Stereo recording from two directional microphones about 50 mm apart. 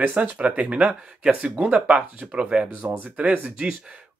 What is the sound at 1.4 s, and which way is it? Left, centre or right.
Speech, right.